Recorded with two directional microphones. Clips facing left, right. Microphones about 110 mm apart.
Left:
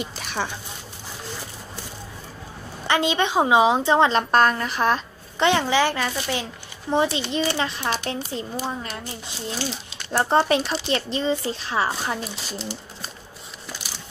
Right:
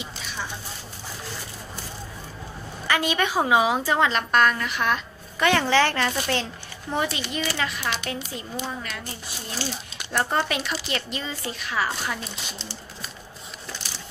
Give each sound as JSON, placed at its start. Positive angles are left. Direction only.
{"t": 0.0, "sound": "a sound", "side_deg": 60}
{"t": 2.9, "sound": "a woman's voice", "side_deg": 25}
{"t": 5.5, "sound": "speech", "side_deg": 15}
{"t": 6.9, "sound": "a woman's voice", "side_deg": 25}
{"t": 10.1, "sound": "speech", "side_deg": 35}